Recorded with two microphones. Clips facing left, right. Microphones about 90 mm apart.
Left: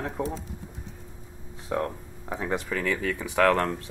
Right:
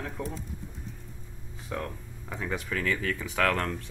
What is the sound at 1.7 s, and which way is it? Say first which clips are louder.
Speech: left 6 dB; 10° left (ahead or behind).